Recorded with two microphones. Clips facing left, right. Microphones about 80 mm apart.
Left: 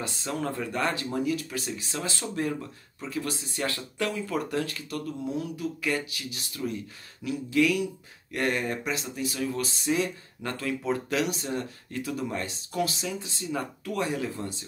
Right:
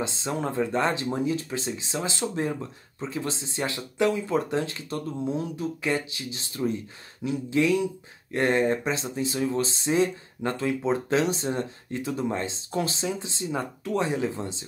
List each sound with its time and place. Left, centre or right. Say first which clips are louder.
0.0 s speech: right 3 dB; right